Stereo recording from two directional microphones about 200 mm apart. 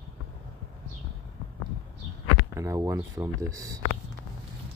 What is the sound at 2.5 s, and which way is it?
Speech, 15° right (ahead or behind).